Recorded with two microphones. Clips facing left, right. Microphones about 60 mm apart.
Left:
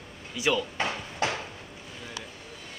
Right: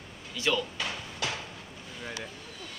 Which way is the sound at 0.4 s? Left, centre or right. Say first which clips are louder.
Left 3 dB; centre.